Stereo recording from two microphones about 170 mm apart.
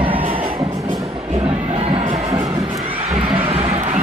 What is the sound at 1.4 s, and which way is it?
Crowd, 35° right (ahead or behind).